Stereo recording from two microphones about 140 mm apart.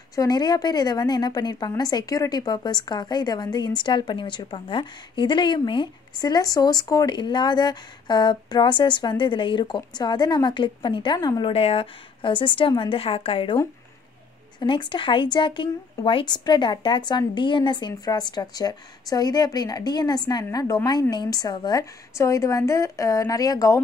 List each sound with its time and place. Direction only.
0.1 s a woman's voice: 25° left (ahead or behind)
11.5 s a woman's voice: 45° left (ahead or behind)
14.6 s speech: 35° left (ahead or behind)